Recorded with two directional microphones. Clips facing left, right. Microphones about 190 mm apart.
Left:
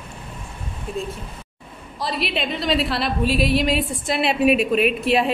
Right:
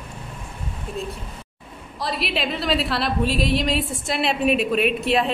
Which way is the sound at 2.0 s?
Centre (ahead or behind).